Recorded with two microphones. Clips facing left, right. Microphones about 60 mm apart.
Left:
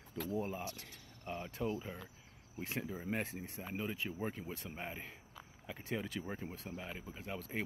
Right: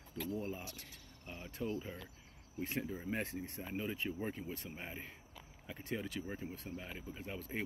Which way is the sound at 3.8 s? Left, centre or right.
Centre.